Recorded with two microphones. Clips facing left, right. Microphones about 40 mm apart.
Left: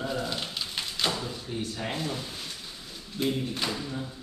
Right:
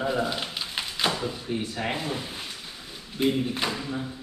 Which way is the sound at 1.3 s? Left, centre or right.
Right.